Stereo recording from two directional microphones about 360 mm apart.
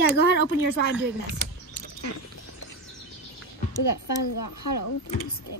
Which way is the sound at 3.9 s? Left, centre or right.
Left.